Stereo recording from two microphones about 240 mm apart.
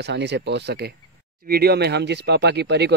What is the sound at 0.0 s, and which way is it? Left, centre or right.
Speech, right.